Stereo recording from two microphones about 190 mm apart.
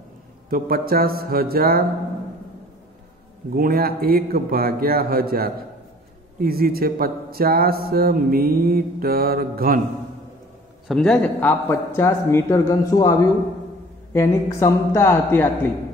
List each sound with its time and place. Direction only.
0.5 s speech: 50° right (ahead or behind)
3.5 s speech: 50° right (ahead or behind)
10.9 s a man's voice: 5° left (ahead or behind)